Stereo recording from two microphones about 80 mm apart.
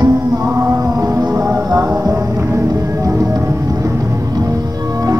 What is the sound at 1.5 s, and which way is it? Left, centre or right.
Music, right.